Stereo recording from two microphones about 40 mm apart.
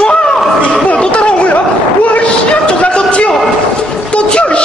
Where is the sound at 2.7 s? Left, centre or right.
Left.